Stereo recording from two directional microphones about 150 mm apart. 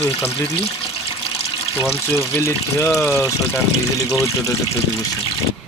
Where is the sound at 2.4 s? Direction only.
15° left (ahead or behind).